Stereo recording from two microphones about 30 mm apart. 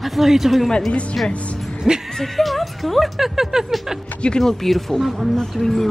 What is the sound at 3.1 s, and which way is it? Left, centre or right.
Speech, centre.